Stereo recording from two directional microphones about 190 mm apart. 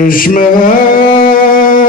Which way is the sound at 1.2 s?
50° left (ahead or behind).